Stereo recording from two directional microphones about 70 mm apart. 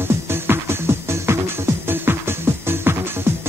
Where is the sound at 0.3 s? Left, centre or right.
Right.